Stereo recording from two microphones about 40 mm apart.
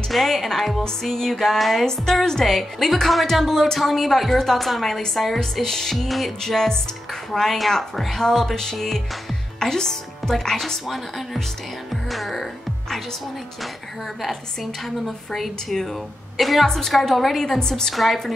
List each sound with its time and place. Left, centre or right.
0.1 s a woman's voice: centre
11.9 s music: centre
14.2 s a woman's voice: centre
17.6 s speech: centre
17.9 s a woman's voice: centre